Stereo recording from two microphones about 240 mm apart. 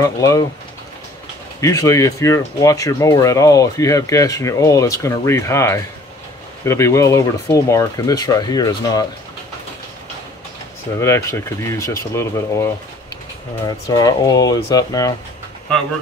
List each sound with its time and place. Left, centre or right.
0.0 s speech: centre
1.6 s speech: centre
11.0 s speech: centre